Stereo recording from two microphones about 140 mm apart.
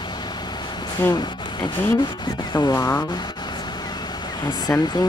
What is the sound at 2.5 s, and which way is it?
Speech, 20° left (ahead or behind).